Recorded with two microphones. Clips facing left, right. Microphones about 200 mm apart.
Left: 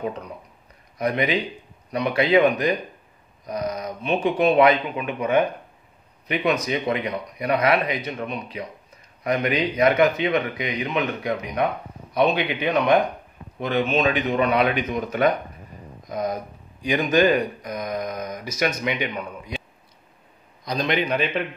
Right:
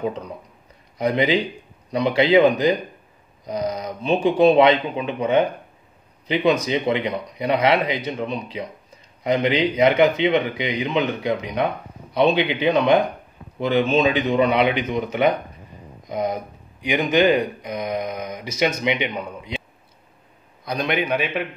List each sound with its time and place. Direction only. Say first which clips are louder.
0.9 s speech: right 3 dB; 30° right (ahead or behind)
20.6 s a man's voice: even; 10° right (ahead or behind)